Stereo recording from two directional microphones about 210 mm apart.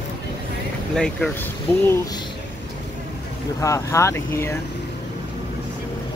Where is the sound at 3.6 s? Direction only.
15° left (ahead or behind).